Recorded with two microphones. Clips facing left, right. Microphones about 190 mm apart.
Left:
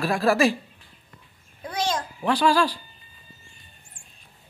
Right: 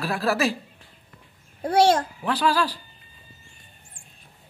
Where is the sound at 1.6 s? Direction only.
65° right (ahead or behind).